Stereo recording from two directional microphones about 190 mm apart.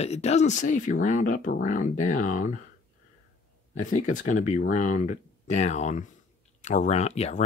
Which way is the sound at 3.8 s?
40° left (ahead or behind).